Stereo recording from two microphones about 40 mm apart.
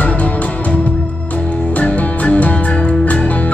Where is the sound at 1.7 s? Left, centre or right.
Left.